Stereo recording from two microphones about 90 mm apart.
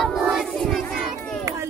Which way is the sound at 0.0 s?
Centre (ahead or behind).